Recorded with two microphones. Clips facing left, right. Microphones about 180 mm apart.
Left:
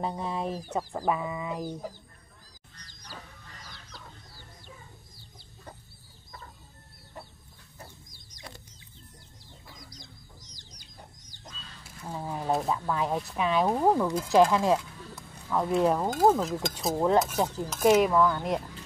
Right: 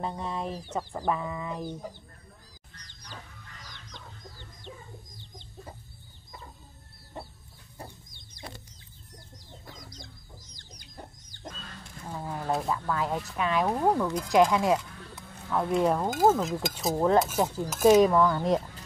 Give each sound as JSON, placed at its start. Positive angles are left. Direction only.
{"t": 0.0, "sound": "speech", "side_deg": 5}
{"t": 8.1, "sound": "a sound", "side_deg": -30}
{"t": 10.5, "sound": "chicken", "side_deg": -55}
{"t": 11.8, "sound": "a sound", "side_deg": 10}
{"t": 12.4, "sound": "speech", "side_deg": 0}
{"t": 12.7, "sound": "speech", "side_deg": 15}
{"t": 13.7, "sound": "speech", "side_deg": 5}
{"t": 14.5, "sound": "speech", "side_deg": -10}